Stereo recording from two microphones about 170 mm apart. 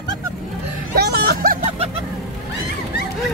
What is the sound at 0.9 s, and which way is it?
Vehicle, 70° right (ahead or behind).